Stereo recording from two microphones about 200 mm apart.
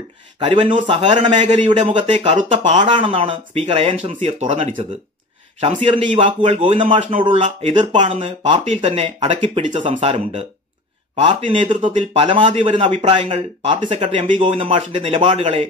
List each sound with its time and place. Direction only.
0.4 s speech: 25° right (ahead or behind)
2.1 s speech: 35° right (ahead or behind)